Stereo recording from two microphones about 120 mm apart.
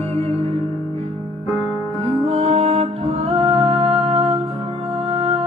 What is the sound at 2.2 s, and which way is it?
Music, 55° right (ahead or behind).